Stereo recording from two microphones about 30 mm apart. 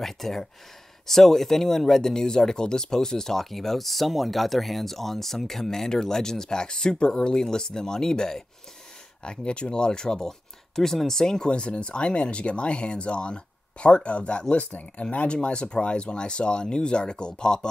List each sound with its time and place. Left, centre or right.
0.0 s speech: centre
9.2 s speech: left
11.5 s speech: left